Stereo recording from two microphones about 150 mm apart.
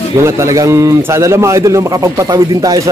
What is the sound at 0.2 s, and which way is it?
Speech, 20° right (ahead or behind).